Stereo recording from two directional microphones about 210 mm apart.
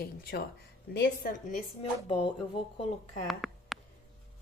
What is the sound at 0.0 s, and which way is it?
A woman's voice, 45° left (ahead or behind).